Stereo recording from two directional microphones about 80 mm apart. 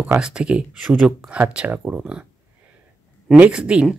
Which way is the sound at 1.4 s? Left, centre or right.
Right.